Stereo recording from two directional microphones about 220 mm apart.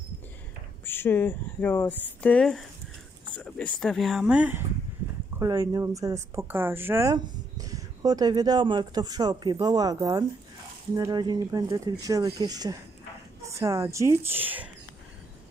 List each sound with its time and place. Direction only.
0.8 s speech: 10° left (ahead or behind); by 14.7 s 10° right (ahead or behind)